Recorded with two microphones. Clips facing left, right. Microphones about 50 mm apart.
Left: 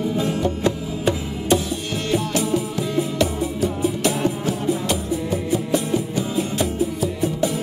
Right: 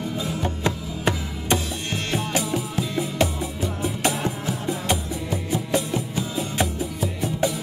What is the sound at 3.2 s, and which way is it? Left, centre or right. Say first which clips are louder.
Music: left 3 dB; right.